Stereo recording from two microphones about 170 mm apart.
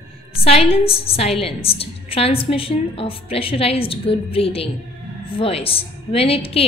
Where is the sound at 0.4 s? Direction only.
35° left (ahead or behind).